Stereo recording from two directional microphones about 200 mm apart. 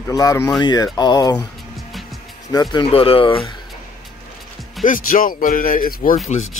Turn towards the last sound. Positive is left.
turn(degrees=45)  # may be behind; listen again after turning